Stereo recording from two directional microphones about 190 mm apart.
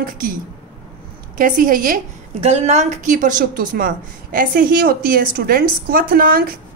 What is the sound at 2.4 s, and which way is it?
A woman's voice, 35° right (ahead or behind).